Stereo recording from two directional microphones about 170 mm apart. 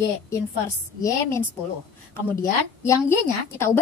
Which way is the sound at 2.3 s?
55° left (ahead or behind).